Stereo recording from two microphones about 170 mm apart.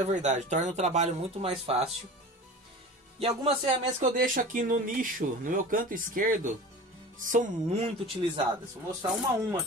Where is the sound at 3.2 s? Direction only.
35° right (ahead or behind).